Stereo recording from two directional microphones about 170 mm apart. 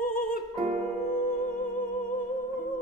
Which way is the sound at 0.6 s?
45° right (ahead or behind).